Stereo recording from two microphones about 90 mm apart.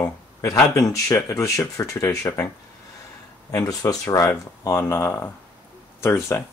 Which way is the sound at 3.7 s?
45° left (ahead or behind).